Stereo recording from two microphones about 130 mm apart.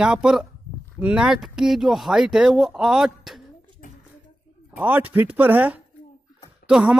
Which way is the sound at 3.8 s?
90° left.